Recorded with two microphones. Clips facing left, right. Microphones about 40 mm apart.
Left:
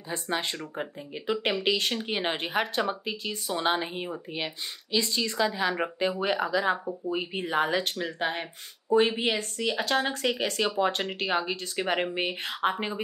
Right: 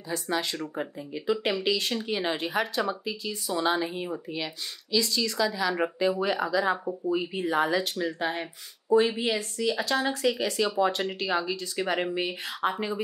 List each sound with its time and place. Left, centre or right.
0.1 s a woman's voice: left
6.2 s speech: left